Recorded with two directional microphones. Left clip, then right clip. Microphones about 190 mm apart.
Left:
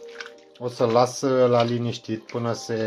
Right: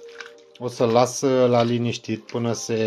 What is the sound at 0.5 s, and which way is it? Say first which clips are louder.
Speech: right 1 dB; 25° right (ahead or behind).